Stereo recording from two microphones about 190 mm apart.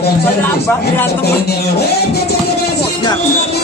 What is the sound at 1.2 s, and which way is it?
Music, 60° left (ahead or behind).